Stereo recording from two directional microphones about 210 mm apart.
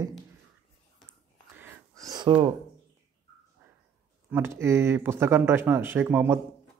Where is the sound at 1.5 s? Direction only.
10° right (ahead or behind).